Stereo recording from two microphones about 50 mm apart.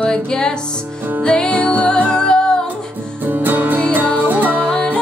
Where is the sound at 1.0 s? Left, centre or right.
Right.